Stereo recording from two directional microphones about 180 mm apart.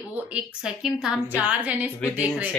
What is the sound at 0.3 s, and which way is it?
Speech, 5° right (ahead or behind).